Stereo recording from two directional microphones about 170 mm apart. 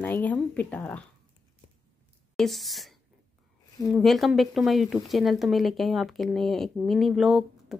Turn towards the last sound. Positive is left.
turn(degrees=0)  # may be behind; listen again after turning